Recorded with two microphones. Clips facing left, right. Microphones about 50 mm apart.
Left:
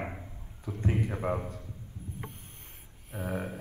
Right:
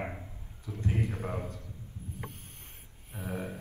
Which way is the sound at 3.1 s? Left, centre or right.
Centre.